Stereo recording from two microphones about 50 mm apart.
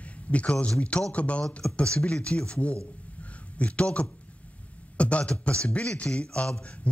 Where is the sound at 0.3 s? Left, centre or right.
Left.